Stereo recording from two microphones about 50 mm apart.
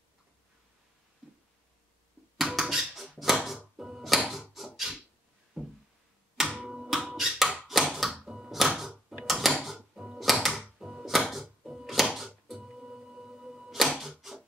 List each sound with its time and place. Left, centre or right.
2.3 s music: centre
4.3 s a sound: centre
4.9 s dog: centre
6.3 s tick-tock: centre
6.6 s a sound: centre
8.2 s music: centre
8.5 s music: centre
9.2 s a sound: centre
10.1 s music: centre
10.8 s music: centre
11.1 s music: centre
12.6 s music: centre
13.7 s a sound: centre